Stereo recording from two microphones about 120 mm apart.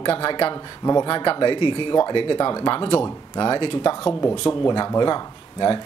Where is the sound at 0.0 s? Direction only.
50° left (ahead or behind).